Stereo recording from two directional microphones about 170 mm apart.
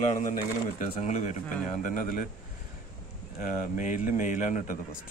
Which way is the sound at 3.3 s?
50° left (ahead or behind).